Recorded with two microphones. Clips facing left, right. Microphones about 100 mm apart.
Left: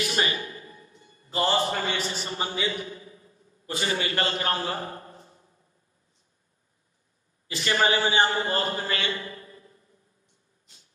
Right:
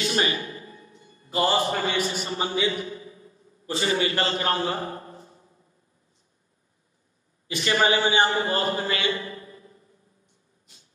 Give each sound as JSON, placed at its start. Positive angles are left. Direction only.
{"t": 0.0, "sound": "a sound", "side_deg": -30}
{"t": 1.4, "sound": "a man's voice", "side_deg": -20}
{"t": 7.4, "sound": "a man's voice", "side_deg": -25}